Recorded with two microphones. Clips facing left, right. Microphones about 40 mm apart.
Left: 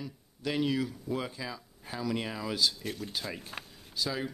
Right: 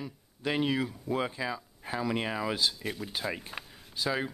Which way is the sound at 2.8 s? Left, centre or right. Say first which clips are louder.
Right 2 dB; centre.